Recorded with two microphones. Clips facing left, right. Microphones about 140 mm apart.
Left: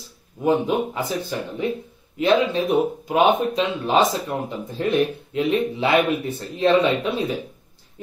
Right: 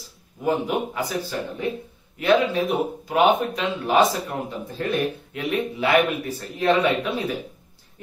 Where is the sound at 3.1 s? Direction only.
20° left (ahead or behind).